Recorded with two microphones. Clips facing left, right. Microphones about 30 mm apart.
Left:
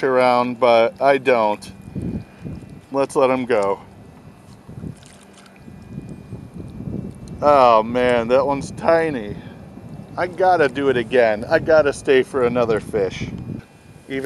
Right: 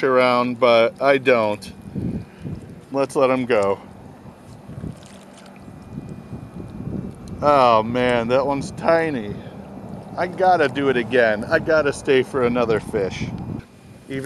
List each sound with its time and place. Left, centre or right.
0.0 s speech: centre
2.9 s speech: centre
7.3 s speech: centre
14.1 s speech: centre